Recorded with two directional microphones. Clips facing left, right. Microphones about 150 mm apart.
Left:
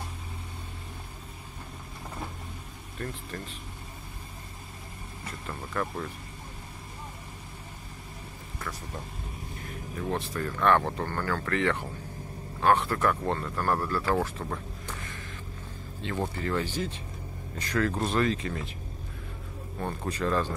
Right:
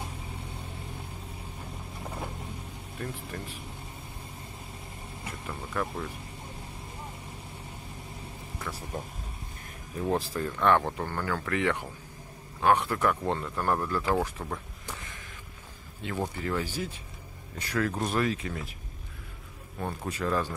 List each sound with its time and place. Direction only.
3.0 s speech: 10° right (ahead or behind)
5.2 s speech: 10° right (ahead or behind)
10.0 s speech: 35° right (ahead or behind)
10.4 s speech: 15° right (ahead or behind)
14.4 s a sound: 5° right (ahead or behind)
16.0 s speech: 10° right (ahead or behind)
19.8 s speech: 10° right (ahead or behind)